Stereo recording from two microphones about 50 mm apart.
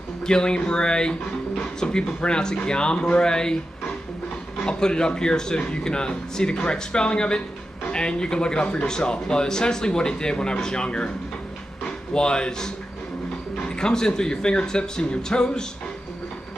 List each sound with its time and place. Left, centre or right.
0.2 s speech: centre
4.6 s speech: centre
12.1 s speech: centre